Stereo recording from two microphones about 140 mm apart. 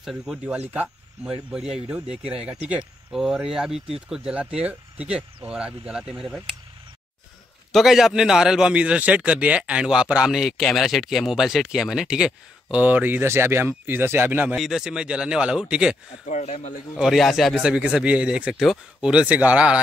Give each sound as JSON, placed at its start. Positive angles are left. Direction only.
{"t": 0.0, "sound": "a man's voice", "side_deg": 0}
{"t": 7.7, "sound": "a man's voice", "side_deg": 0}
{"t": 16.3, "sound": "speech", "side_deg": 60}
{"t": 16.9, "sound": "a man's voice", "side_deg": 0}